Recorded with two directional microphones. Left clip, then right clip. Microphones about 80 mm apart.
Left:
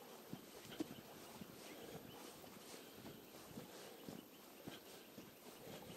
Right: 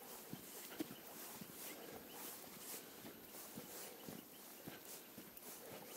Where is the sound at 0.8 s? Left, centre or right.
Right.